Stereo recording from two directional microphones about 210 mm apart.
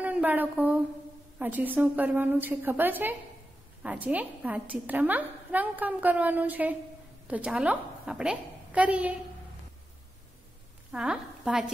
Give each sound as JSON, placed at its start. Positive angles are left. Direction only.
{"t": 0.0, "sound": "a woman's voice", "side_deg": -5}
{"t": 10.9, "sound": "a woman's voice", "side_deg": -5}